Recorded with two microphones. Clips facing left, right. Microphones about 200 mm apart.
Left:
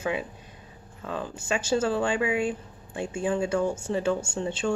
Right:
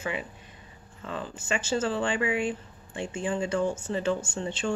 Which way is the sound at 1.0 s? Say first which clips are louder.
Left 3 dB; 10° left (ahead or behind).